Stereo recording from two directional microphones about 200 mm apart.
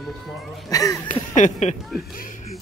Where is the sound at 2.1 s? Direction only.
40° left (ahead or behind).